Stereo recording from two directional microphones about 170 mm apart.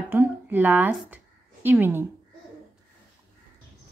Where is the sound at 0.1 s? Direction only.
10° right (ahead or behind).